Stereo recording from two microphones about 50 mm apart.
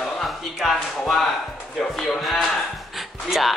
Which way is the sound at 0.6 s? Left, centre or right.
Centre.